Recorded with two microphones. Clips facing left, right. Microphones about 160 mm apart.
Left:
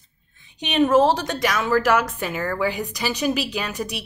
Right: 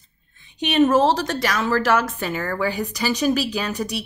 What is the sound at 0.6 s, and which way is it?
Speech, 15° left (ahead or behind).